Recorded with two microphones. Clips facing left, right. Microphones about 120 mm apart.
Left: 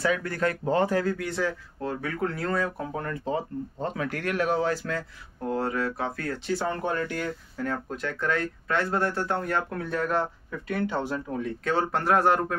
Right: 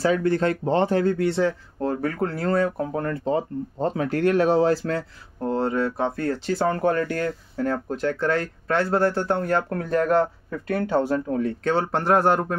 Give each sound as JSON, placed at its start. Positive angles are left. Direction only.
{"t": 0.0, "sound": "speech", "side_deg": -30}
{"t": 6.5, "sound": "speech", "side_deg": -45}
{"t": 7.5, "sound": "speech", "side_deg": -30}
{"t": 11.6, "sound": "speech", "side_deg": -30}